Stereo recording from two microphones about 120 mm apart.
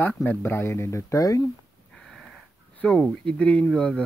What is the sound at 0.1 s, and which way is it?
Speech, 15° left (ahead or behind).